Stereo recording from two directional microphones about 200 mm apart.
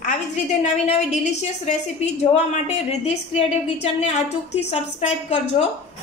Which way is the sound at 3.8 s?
35° left (ahead or behind).